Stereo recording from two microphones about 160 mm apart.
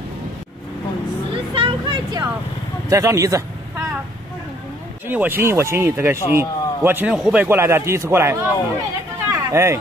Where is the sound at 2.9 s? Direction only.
20° right (ahead or behind).